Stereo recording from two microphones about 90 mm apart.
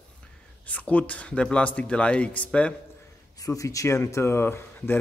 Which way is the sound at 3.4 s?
40° left (ahead or behind).